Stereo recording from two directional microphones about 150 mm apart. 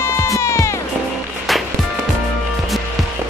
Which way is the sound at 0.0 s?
20° left (ahead or behind).